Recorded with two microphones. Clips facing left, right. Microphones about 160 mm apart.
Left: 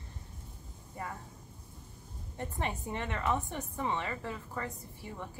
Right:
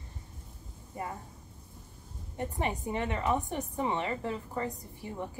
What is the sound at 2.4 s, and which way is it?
A woman's voice, 15° right (ahead or behind).